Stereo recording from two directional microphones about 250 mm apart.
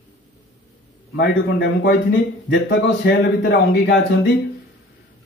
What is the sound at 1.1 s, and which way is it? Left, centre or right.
A man's voice, left.